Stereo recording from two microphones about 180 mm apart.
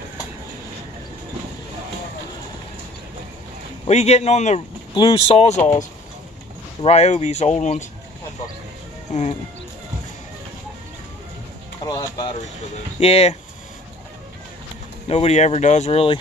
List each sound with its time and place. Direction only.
3.8 s speech: 35° left (ahead or behind)
6.8 s speech: 35° left (ahead or behind)
11.8 s speech: 20° left (ahead or behind)
13.0 s speech: 35° left (ahead or behind)
15.0 s speech: 35° left (ahead or behind)